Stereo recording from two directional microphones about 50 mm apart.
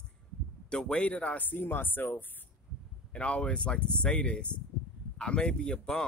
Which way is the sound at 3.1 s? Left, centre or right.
Left.